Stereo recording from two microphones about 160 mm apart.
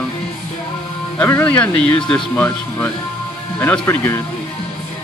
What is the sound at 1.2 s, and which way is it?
Speech, 10° left (ahead or behind).